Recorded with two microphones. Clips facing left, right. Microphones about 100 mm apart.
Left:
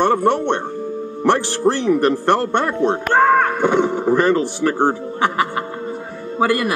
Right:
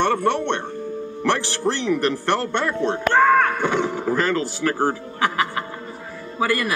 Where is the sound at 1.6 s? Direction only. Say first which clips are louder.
Left 6 dB; 30° left (ahead or behind).